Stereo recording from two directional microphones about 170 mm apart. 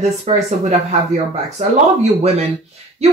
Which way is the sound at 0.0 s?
40° right (ahead or behind).